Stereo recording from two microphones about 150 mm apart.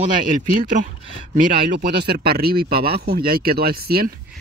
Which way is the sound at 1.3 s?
60° right (ahead or behind).